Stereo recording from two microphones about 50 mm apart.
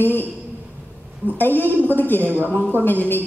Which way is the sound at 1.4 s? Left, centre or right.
Left.